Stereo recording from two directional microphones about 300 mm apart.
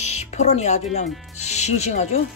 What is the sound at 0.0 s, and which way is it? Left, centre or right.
A woman's voice, left.